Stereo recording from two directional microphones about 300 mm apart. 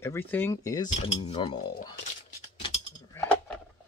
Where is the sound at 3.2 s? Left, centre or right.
Centre.